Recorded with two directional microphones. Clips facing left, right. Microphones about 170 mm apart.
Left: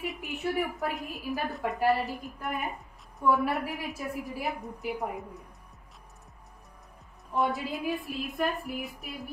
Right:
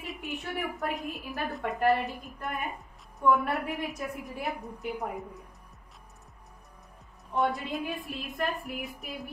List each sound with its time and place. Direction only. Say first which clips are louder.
0.0 s a woman's voice: left 4 dB; centre (ahead or behind)
7.3 s a woman's voice: even; centre (ahead or behind)